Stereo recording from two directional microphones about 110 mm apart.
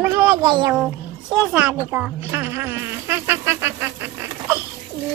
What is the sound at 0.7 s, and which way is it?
A child's voice, 5° right (ahead or behind).